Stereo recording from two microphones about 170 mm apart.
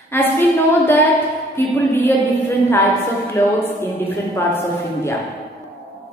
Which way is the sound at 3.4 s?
15° left (ahead or behind).